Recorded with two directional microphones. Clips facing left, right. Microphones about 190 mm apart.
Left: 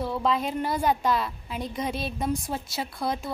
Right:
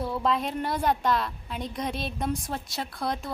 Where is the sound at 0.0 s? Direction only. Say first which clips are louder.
Left 1 dB; centre (ahead or behind).